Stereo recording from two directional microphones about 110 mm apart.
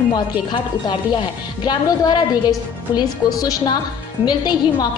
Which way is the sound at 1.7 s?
40° left (ahead or behind).